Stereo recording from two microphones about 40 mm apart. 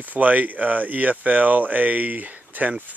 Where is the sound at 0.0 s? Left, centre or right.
Right.